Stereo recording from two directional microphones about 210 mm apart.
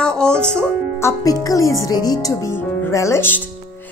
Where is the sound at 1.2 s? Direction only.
15° left (ahead or behind).